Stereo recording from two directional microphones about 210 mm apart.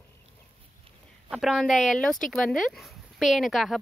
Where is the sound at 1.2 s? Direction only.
Centre (ahead or behind).